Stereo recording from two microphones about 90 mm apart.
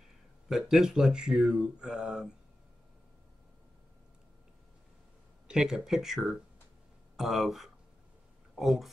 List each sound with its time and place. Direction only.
0.5 s speech: 5° right (ahead or behind)
5.5 s speech: 5° right (ahead or behind)